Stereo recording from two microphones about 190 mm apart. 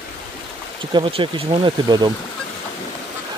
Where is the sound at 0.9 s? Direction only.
25° right (ahead or behind).